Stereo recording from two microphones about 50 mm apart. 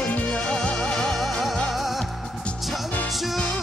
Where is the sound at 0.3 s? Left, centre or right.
Centre.